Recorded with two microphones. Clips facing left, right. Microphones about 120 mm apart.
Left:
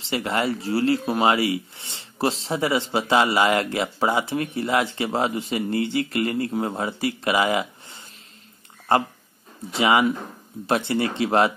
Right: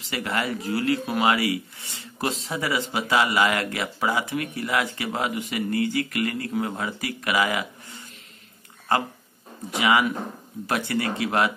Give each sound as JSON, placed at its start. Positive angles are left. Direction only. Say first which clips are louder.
{"t": 0.0, "sound": "speech", "louder": "left 4 dB", "side_deg": 25}
{"t": 9.8, "sound": "speech", "louder": "left 2 dB", "side_deg": 25}